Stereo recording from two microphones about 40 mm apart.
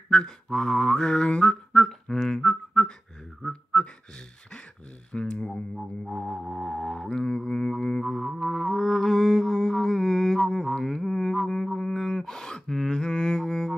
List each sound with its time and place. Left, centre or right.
0.1 s mantra: centre
1.3 s a sound: left
1.9 s beatboxing: centre
3.4 s speech: centre
5.1 s speech: left
6.1 s mantra: centre
6.5 s didgeridoo: centre
8.1 s music: centre
11.6 s gasp: centre